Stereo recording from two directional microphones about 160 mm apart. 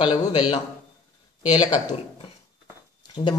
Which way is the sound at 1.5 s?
25° left (ahead or behind).